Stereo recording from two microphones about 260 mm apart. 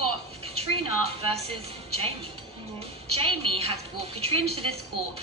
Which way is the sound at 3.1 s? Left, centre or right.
Right.